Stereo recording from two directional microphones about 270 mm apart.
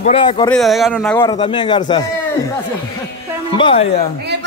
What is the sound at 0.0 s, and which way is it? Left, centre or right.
Speech, left.